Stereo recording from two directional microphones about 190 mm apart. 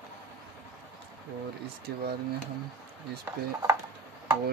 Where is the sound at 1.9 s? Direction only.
65° right (ahead or behind).